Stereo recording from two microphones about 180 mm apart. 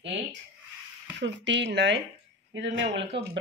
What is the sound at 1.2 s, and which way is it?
Speech, 80° right.